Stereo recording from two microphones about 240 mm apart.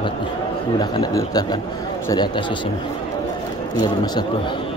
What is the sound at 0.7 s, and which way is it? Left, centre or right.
Speech, centre.